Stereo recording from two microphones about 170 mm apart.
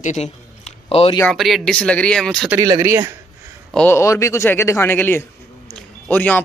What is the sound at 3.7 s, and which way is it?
A man's voice, 15° left (ahead or behind).